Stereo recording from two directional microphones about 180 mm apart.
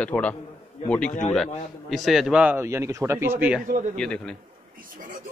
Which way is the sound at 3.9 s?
5° left (ahead or behind).